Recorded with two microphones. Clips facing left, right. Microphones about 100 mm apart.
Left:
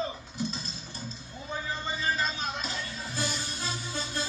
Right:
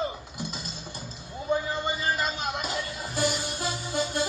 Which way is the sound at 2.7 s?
50° right (ahead or behind).